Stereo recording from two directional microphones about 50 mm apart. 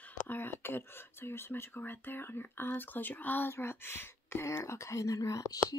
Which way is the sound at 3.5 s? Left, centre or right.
Left.